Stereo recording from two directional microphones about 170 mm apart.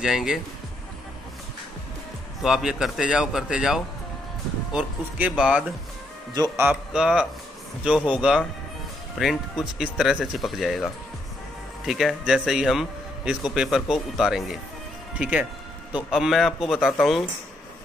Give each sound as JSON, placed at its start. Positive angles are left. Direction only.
{"t": 0.0, "sound": "speech", "side_deg": 0}
{"t": 2.4, "sound": "speech", "side_deg": -5}
{"t": 6.3, "sound": "a man's voice", "side_deg": -20}
{"t": 6.7, "sound": "speech", "side_deg": -5}